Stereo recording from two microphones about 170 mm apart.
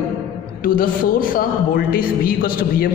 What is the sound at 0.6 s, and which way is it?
A woman's voice, 55° left (ahead or behind).